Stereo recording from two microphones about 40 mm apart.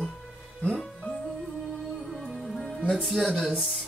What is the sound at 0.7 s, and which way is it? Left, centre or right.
Music, centre.